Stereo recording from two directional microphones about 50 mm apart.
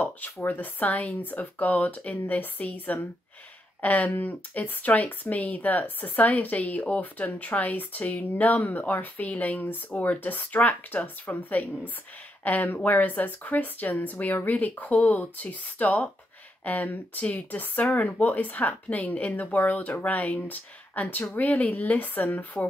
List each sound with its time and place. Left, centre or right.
0.5 s speech: left